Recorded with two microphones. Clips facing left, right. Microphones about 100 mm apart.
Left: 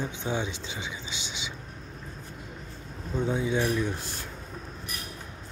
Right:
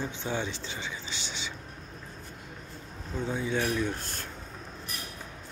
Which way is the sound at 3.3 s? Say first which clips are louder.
Left 3 dB; 15° left (ahead or behind).